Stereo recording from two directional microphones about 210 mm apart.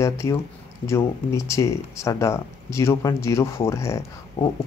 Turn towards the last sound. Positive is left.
turn(degrees=15)  # may be behind; listen again after turning